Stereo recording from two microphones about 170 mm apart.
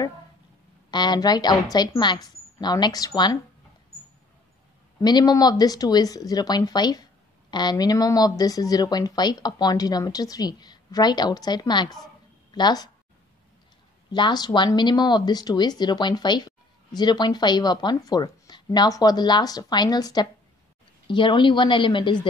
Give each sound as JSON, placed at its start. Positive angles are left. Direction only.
{"t": 0.8, "sound": "speech", "side_deg": 25}
{"t": 5.0, "sound": "speech", "side_deg": 25}
{"t": 14.1, "sound": "speech", "side_deg": 25}